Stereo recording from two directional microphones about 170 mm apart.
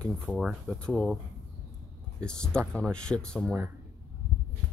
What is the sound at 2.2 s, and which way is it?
Speech, 5° left (ahead or behind).